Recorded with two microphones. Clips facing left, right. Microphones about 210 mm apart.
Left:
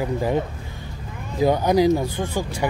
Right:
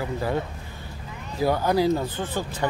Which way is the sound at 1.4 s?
20° left (ahead or behind).